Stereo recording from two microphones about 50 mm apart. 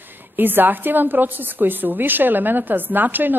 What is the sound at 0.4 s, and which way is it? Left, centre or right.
A woman's voice, right.